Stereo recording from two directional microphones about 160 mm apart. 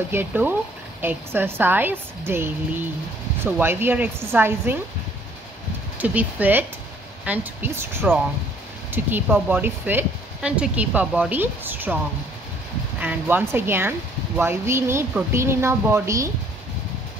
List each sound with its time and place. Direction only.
0.1 s speech: 10° right (ahead or behind)
3.5 s speech: 10° right (ahead or behind)
5.9 s speech: 10° right (ahead or behind)
13.0 s speech: 10° right (ahead or behind)